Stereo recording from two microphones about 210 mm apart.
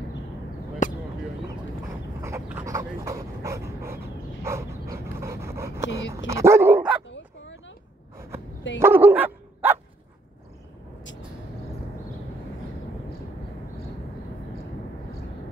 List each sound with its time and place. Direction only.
0.8 s a sound: 35° left (ahead or behind)
2.2 s dog: 15° right (ahead or behind)
8.7 s dog: 10° right (ahead or behind)